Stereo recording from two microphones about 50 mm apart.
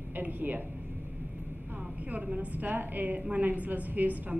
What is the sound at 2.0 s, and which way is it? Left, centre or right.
A woman's voice, right.